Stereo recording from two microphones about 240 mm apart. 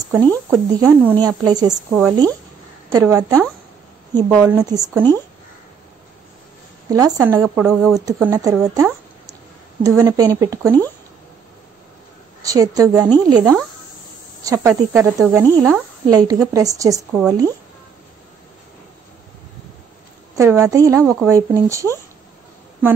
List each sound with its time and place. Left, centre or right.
0.2 s speech: centre
0.7 s speech: centre
1.7 s a woman's voice: centre
2.9 s speech: centre
6.9 s speech: centre
8.0 s speech: centre
9.8 s speech: centre
12.4 s speech: centre
20.3 s speech: centre